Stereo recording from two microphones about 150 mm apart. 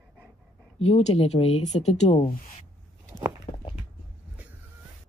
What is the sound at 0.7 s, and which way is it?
Speech, 45° left (ahead or behind).